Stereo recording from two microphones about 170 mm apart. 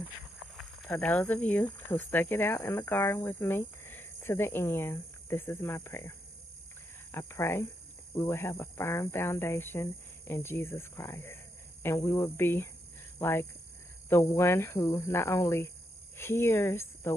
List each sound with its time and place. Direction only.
0.8 s speech: 10° left (ahead or behind)